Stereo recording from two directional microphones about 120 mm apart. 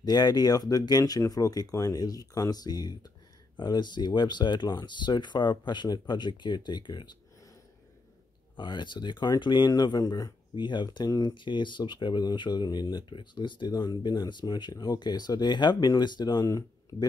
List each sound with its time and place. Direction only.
0.0 s speech: 35° left (ahead or behind)
8.5 s speech: 40° left (ahead or behind)